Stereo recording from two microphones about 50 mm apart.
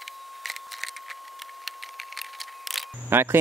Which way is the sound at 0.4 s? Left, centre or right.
Centre.